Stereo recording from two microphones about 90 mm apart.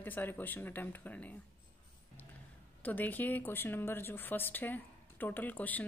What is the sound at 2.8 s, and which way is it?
Speech, 20° left (ahead or behind).